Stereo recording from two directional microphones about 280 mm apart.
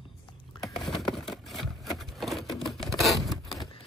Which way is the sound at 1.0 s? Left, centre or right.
Centre.